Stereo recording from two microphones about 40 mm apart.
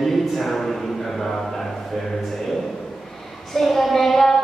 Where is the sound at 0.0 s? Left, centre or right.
Centre.